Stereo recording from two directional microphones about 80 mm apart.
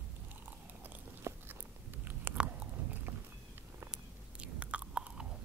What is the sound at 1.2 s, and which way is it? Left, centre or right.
Biting, right.